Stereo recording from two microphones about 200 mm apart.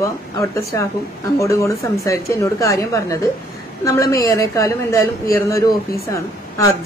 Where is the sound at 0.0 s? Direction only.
15° left (ahead or behind).